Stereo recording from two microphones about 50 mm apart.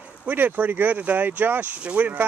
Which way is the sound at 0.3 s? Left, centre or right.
Right.